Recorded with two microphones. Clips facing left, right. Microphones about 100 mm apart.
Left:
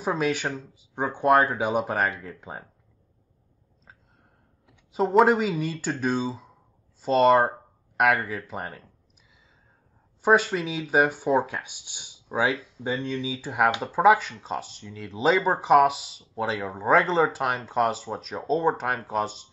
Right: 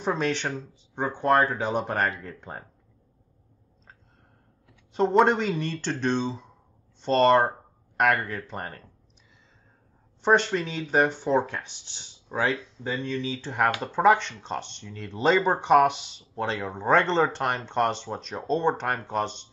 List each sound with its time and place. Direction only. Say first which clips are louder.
0.0 s speech: left 1 dB; 5° left (ahead or behind)
4.9 s speech: left 1 dB; 5° left (ahead or behind)
10.2 s speech: left 1 dB; 5° left (ahead or behind)